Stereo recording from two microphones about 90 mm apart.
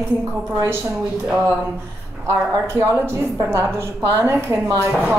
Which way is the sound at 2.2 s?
30° right (ahead or behind).